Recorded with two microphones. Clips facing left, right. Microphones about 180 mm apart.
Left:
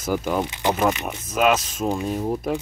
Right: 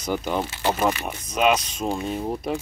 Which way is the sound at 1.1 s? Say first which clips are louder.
Left 1 dB; centre (ahead or behind).